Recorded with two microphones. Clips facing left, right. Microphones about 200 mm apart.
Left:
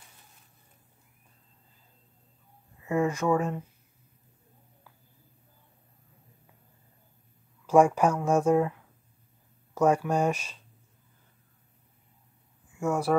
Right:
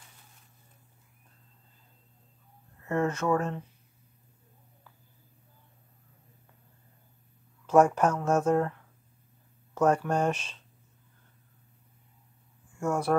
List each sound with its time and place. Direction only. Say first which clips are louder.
2.8 s speech: left 2 dB; 10° left (ahead or behind)
7.6 s speech: left 1 dB; 10° left (ahead or behind)
12.7 s speech: left 1 dB; 10° left (ahead or behind)